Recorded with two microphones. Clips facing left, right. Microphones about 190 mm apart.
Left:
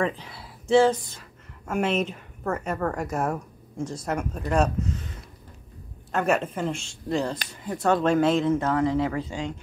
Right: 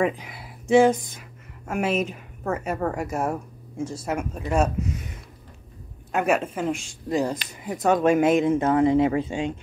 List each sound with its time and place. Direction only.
0.0 s speech: 15° right (ahead or behind)
6.1 s speech: 5° right (ahead or behind)